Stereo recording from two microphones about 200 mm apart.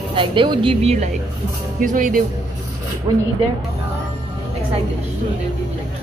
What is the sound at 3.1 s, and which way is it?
Speech, 25° right (ahead or behind).